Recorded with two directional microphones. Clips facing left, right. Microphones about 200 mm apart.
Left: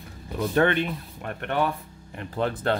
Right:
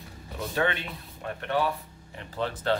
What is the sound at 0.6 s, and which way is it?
Speech, 60° left (ahead or behind).